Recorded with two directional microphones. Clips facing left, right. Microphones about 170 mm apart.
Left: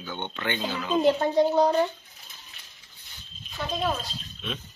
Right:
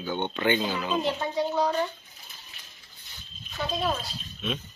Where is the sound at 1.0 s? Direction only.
40° left (ahead or behind).